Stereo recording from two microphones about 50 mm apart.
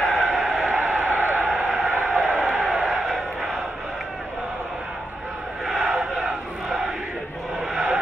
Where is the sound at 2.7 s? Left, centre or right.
Centre.